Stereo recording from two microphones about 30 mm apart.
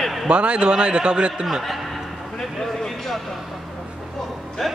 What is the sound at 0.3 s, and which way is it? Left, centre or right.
Speech, right.